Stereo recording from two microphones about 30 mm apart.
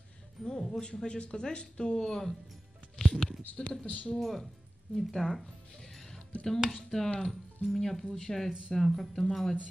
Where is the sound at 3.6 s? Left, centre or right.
Left.